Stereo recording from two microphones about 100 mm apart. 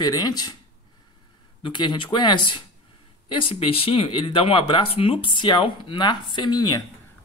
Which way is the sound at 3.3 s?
65° left (ahead or behind).